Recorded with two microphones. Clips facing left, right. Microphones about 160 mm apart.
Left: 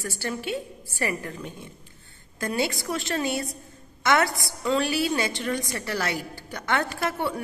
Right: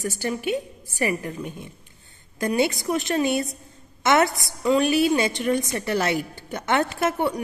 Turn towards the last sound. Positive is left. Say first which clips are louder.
# right 4 dB
turn(degrees=-20)  # may be behind; listen again after turning